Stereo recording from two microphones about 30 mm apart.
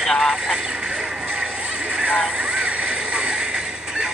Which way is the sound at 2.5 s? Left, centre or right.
Right.